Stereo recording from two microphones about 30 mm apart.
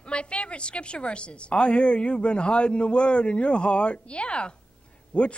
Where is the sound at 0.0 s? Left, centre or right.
Left.